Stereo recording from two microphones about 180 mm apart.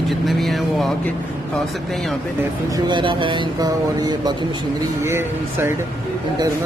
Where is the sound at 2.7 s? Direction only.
25° right (ahead or behind).